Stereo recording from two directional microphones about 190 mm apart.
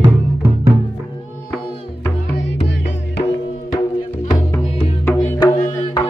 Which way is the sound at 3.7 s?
20° left (ahead or behind).